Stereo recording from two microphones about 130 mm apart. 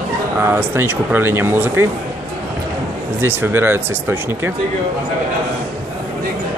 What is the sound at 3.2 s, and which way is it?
Speech, 15° right (ahead or behind).